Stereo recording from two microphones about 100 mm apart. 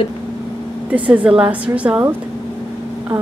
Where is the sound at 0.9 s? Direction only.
15° right (ahead or behind).